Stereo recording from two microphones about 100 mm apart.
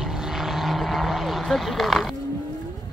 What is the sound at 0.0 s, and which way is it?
Vehicle, 5° right (ahead or behind).